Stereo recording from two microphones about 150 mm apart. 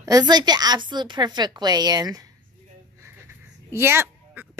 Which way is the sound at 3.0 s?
15° right (ahead or behind).